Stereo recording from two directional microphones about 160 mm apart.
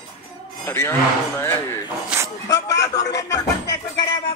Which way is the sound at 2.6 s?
20° left (ahead or behind).